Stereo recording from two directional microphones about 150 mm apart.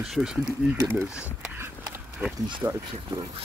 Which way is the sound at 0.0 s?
5° right (ahead or behind).